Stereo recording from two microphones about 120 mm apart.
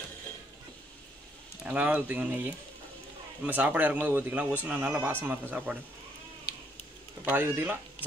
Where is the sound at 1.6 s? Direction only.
10° right (ahead or behind).